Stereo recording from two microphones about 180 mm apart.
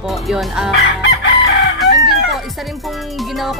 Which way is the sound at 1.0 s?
75° left (ahead or behind).